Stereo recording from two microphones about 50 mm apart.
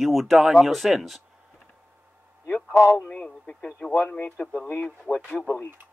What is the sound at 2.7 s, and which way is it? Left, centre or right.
Speech, right.